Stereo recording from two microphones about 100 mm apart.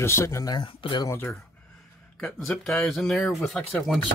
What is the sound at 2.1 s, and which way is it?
Speech, 10° left (ahead or behind).